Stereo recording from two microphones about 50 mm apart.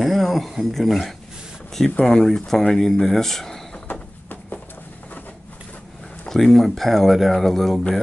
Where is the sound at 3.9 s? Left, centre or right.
Left.